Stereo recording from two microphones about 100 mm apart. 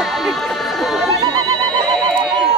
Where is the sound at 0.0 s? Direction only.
Centre (ahead or behind).